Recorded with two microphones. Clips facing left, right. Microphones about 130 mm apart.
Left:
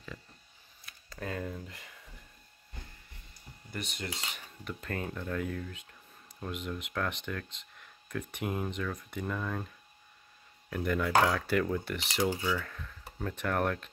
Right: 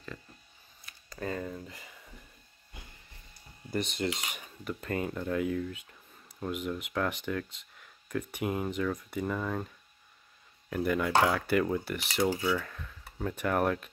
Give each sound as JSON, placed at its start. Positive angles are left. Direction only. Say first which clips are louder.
{"t": 1.1, "sound": "speech", "louder": "right 2 dB", "side_deg": 0}
{"t": 3.7, "sound": "speech", "louder": "right 8 dB", "side_deg": -30}
{"t": 4.3, "sound": "speech", "louder": "right 3 dB", "side_deg": -10}
{"t": 10.7, "sound": "speech", "louder": "right 1 dB", "side_deg": -5}